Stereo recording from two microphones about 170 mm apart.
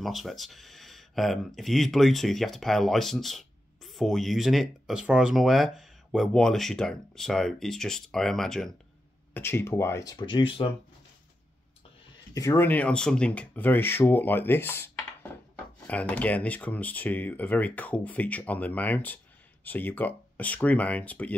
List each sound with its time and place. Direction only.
0.0 s speech: centre (ahead or behind)
9.3 s speech: 15° left (ahead or behind); by 10.7 s 30° left (ahead or behind)
12.4 s speech: 15° left (ahead or behind)
15.9 s speech: 10° left (ahead or behind)